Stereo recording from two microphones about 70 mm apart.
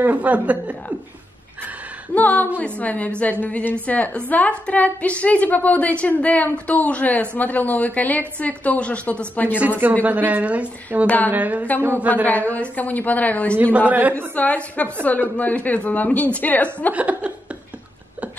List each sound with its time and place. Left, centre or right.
0.0 s speech: right
2.1 s a woman's voice: left
10.0 s speech: right
11.1 s a woman's voice: left
11.3 s speech: right
12.3 s a woman's voice: left
13.7 s speech: right
14.3 s a woman's voice: left
16.9 s speech: right